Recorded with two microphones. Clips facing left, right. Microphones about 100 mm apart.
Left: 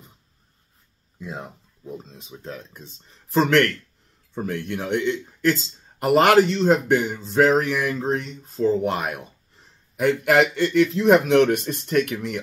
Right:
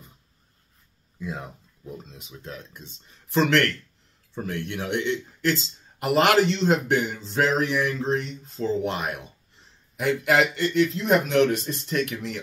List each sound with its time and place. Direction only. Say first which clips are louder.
1.9 s speech: left 3 dB; 30° left (ahead or behind); by 12.4 s 55° left (ahead or behind)